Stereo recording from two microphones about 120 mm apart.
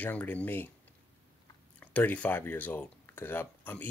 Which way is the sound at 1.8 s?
15° left (ahead or behind).